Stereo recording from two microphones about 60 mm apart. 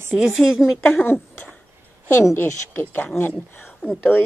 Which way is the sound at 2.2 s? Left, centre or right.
Left.